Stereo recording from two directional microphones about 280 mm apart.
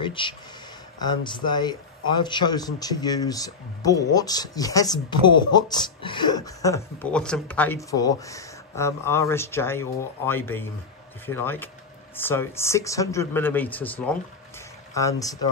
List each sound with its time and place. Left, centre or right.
0.0 s a man's voice: centre